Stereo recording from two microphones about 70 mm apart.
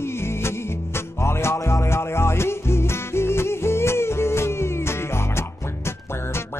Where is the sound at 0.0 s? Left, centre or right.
Left.